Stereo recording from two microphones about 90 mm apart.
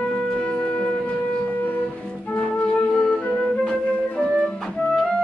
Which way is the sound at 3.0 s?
10° left (ahead or behind).